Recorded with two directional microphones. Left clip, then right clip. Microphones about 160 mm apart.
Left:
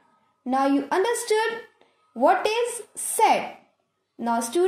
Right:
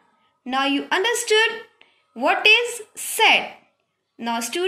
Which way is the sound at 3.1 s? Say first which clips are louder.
Right 3 dB; 45° left (ahead or behind).